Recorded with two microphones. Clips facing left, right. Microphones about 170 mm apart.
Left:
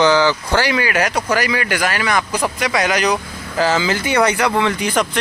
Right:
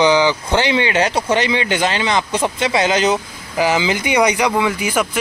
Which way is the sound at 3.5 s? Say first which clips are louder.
Even; 15° right (ahead or behind).